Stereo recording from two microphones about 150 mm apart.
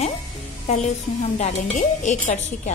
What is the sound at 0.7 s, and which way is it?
A woman's voice, 50° left (ahead or behind).